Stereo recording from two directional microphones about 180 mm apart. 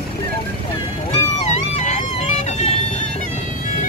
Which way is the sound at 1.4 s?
40° left (ahead or behind).